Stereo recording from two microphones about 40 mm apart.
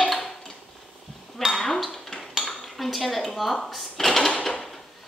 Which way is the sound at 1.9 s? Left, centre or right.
Centre.